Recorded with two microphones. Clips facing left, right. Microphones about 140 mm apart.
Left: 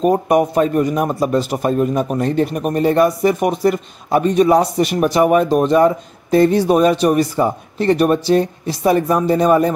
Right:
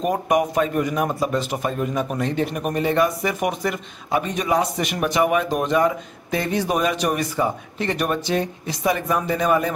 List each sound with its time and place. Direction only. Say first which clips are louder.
0.0 s a man's voice: left 6 dB; 35° left (ahead or behind)